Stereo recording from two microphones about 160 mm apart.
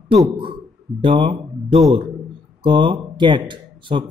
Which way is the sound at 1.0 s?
30° right (ahead or behind).